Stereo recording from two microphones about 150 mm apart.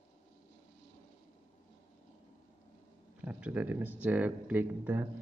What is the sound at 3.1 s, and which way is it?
Speech, 10° right (ahead or behind).